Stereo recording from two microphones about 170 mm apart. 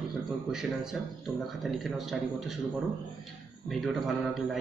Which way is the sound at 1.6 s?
Centre (ahead or behind).